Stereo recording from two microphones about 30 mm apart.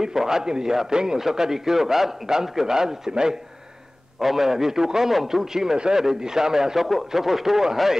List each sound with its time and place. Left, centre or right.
0.0 s a man's voice: centre
4.2 s a man's voice: centre